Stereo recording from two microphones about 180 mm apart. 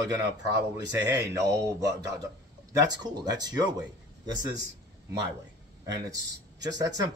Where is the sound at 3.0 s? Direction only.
20° right (ahead or behind).